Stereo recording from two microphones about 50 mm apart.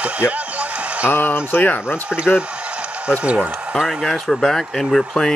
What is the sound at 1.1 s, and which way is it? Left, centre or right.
Speech, left.